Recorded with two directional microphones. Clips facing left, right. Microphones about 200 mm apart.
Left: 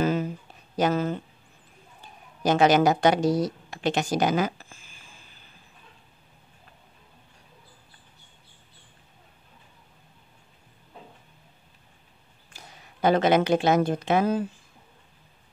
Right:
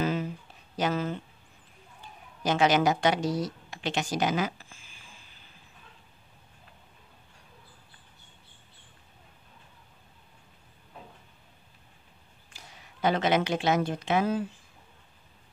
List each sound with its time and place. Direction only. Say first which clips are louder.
0.0 s a sound: left 4 dB; 45° left (ahead or behind)
0.7 s speech: left 5 dB; 45° left (ahead or behind)
2.4 s speech: left 4 dB; 45° left (ahead or behind)
12.5 s a woman's voice: left 3 dB; 45° left (ahead or behind)